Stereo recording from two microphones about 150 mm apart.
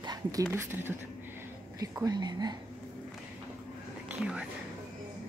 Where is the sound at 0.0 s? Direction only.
25° right (ahead or behind).